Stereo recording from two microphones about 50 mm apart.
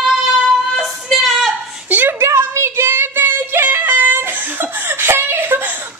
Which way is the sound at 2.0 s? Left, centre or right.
Right.